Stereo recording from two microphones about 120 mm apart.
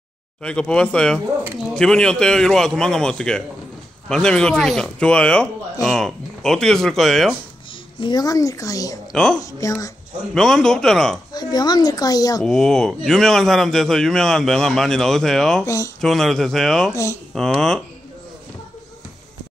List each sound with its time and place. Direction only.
0.4 s a man's voice: 10° left (ahead or behind)
8.0 s speech: 35° left (ahead or behind)
9.1 s a man's voice: 5° left (ahead or behind)
9.4 s speech: 25° left (ahead or behind)
10.3 s a man's voice: 5° left (ahead or behind)
11.3 s speech: 35° left (ahead or behind)
12.4 s a man's voice: 5° left (ahead or behind)
15.6 s speech: 25° left (ahead or behind)
16.0 s a man's voice: 5° left (ahead or behind)
16.9 s speech: 25° left (ahead or behind)
17.3 s a man's voice: 5° left (ahead or behind)